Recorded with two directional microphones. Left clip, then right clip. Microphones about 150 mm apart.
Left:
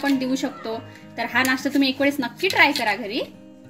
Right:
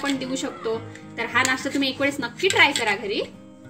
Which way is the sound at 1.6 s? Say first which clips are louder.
Left 3 dB; 45° left (ahead or behind).